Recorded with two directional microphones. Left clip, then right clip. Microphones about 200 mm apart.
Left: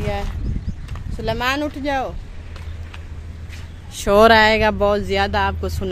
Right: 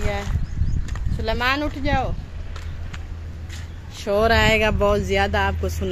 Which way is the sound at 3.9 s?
55° left (ahead or behind).